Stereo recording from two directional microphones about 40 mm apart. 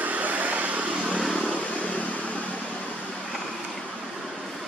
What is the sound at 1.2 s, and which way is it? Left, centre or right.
Vehicle, left.